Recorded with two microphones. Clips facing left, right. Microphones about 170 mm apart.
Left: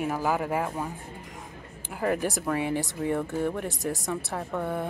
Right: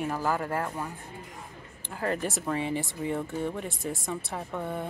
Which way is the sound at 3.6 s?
75° left (ahead or behind).